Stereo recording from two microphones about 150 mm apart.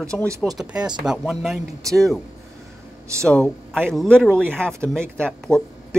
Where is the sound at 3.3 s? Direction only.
5° left (ahead or behind).